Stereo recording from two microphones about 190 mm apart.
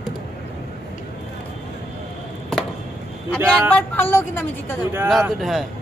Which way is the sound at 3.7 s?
10° left (ahead or behind).